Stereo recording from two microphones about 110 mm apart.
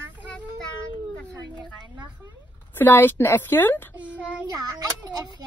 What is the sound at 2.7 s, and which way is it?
A woman's voice, 20° left (ahead or behind).